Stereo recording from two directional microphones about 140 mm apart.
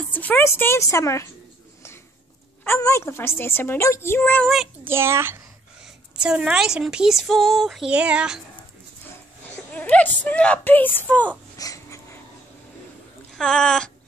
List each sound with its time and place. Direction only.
0.1 s a woman's voice: 10° left (ahead or behind)
2.6 s a woman's voice: 15° left (ahead or behind)
4.8 s a child's voice: 20° right (ahead or behind)
6.2 s speech: 5° right (ahead or behind)
9.7 s a woman's voice: 10° left (ahead or behind)
11.5 s wheeze: 25° left (ahead or behind)
13.4 s speech: 5° left (ahead or behind)